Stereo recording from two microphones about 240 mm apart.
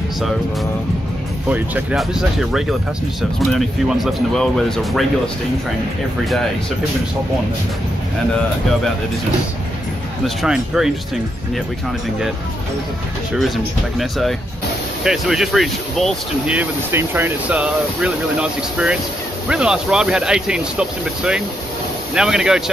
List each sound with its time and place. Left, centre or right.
1.5 s speech: centre
10.2 s speech: centre
13.9 s speech: centre
22.1 s speech: centre